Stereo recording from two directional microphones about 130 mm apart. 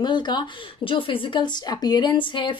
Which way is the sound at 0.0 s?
35° left (ahead or behind).